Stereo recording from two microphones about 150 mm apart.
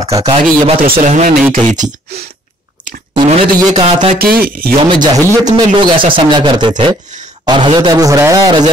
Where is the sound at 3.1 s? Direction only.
30° right (ahead or behind).